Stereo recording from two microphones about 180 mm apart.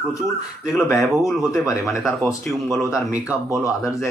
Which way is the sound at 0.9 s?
Centre (ahead or behind).